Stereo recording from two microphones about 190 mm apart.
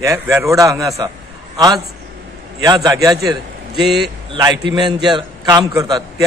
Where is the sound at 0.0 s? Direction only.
15° right (ahead or behind).